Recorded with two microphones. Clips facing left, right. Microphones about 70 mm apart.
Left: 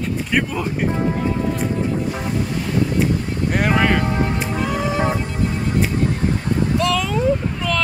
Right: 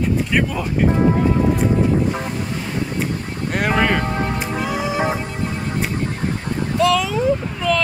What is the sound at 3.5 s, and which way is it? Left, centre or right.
Speech, centre.